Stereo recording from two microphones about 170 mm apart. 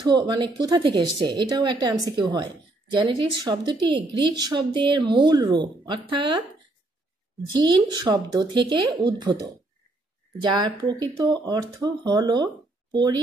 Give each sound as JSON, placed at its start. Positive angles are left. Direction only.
{"t": 0.0, "sound": "a woman's voice", "side_deg": -25}
{"t": 7.6, "sound": "a woman's voice", "side_deg": -25}
{"t": 10.4, "sound": "a woman's voice", "side_deg": -25}